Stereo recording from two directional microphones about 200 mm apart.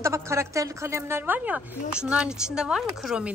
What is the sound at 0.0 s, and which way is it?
A woman's voice, 15° right (ahead or behind).